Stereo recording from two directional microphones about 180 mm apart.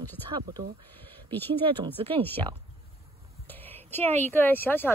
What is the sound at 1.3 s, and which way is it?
Speech, 10° left (ahead or behind).